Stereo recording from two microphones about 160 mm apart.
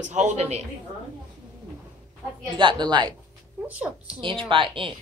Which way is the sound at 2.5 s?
30° right (ahead or behind).